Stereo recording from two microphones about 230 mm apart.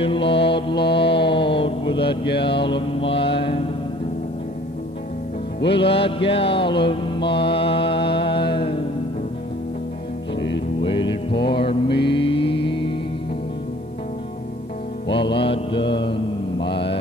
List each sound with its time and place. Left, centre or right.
0.0 s mantra: left
5.8 s mantra: left
10.8 s music: left
12.1 s mantra: left
15.0 s mantra: left